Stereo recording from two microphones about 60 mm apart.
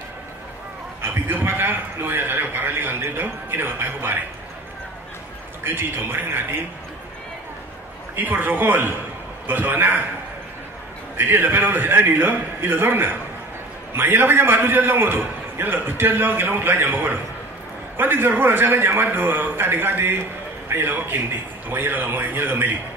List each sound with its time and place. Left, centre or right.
1.0 s a sound: right
5.6 s a man's voice: right
8.2 s a man's voice: right
11.1 s a man's voice: right